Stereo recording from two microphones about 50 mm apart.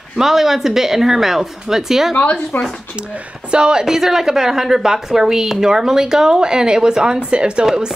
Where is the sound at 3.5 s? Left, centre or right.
Centre.